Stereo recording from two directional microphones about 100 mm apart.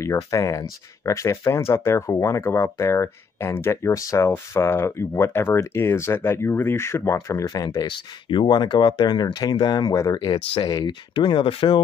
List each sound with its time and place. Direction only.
0.0 s speech: 30° left (ahead or behind)
8.3 s speech: 50° left (ahead or behind)
10.2 s speech: 50° left (ahead or behind)
11.1 s speech: 55° left (ahead or behind)